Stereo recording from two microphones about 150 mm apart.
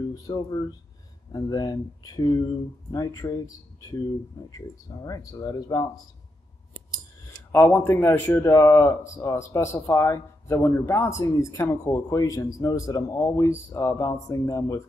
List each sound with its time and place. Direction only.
0.1 s a man's voice: 25° left (ahead or behind)
4.5 s a man's voice: 25° left (ahead or behind)
7.5 s a man's voice: 15° left (ahead or behind)